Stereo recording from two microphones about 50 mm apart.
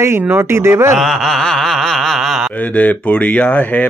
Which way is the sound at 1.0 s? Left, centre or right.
Centre.